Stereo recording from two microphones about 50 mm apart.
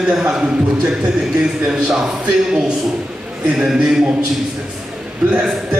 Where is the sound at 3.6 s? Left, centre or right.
Centre.